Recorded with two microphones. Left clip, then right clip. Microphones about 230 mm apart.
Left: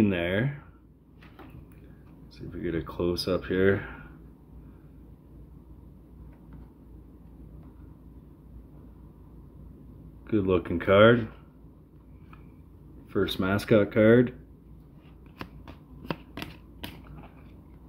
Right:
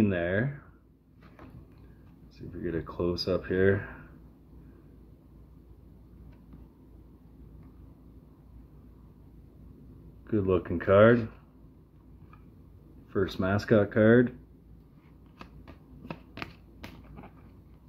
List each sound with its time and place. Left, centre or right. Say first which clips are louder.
0.0 s speech: left 1 dB; centre
2.3 s speech: left 2 dB; centre
10.2 s speech: left 2 dB; centre
13.1 s speech: left 2 dB; centre
15.3 s shuffling cards: left 6 dB; centre
16.3 s finger snapping: left 2 dB; centre